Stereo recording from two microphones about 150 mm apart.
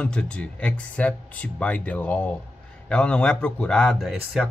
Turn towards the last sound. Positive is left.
turn(degrees=0)  # may be behind; listen again after turning